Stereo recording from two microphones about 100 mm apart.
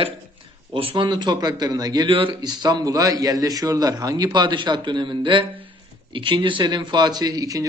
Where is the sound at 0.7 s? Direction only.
70° right (ahead or behind).